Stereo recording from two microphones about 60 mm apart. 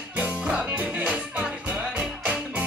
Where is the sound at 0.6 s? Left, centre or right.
Right.